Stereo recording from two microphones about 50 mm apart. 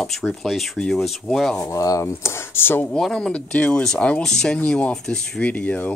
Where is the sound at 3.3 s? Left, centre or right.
Left.